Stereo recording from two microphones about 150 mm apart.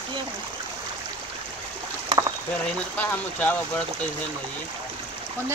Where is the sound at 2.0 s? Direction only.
25° right (ahead or behind).